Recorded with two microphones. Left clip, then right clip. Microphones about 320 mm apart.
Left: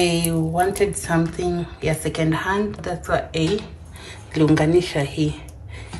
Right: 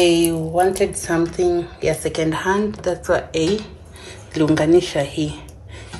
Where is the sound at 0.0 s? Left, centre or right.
Centre.